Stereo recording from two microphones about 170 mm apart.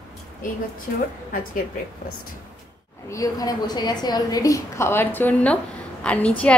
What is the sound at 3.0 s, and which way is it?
A woman's voice, 20° left (ahead or behind).